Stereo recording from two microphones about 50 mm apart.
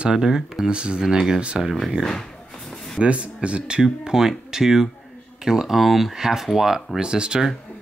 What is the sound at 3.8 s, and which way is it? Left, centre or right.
Speech, centre.